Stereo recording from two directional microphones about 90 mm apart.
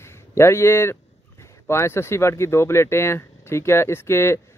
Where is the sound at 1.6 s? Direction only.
30° left (ahead or behind).